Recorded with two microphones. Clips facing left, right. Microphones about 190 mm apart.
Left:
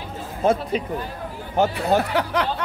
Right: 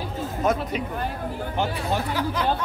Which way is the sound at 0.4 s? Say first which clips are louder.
Left 4 dB; 30° left (ahead or behind).